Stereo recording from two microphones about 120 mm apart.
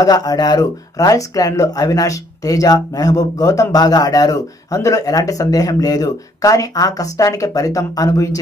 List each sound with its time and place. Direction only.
0.0 s speech: 30° left (ahead or behind)